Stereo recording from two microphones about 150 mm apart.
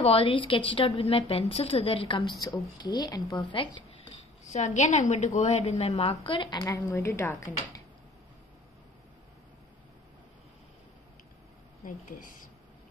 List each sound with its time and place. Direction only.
0.0 s a woman's voice: 40° left (ahead or behind)
4.5 s a woman's voice: 50° left (ahead or behind); by 6.6 s 30° left (ahead or behind)
6.6 s speech: 20° left (ahead or behind)
11.8 s speech: 60° left (ahead or behind)